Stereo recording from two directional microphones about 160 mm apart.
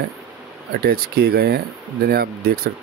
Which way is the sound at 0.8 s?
80° right.